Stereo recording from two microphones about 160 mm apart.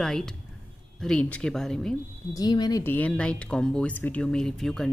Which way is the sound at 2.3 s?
25° left (ahead or behind).